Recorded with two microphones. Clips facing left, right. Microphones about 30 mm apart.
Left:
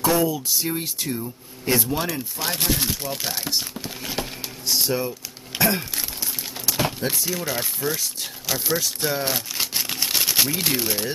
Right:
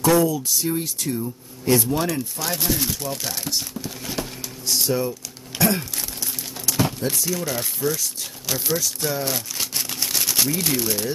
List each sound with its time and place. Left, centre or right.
0.2 s speech: left
1.9 s speech: centre
2.3 s speech: left
2.7 s crumpling: centre
6.6 s speech: left
8.5 s speech: centre
8.7 s speech: left